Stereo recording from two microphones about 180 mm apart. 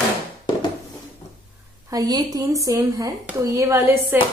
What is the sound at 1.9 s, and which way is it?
Speech, 20° right (ahead or behind).